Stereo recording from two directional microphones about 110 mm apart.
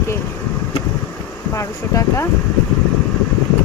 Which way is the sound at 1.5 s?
25° left (ahead or behind).